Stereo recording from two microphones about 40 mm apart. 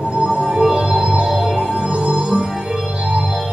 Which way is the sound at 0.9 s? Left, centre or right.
Right.